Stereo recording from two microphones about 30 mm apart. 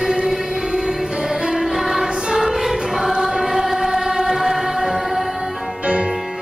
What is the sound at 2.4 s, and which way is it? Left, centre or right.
Choir, centre.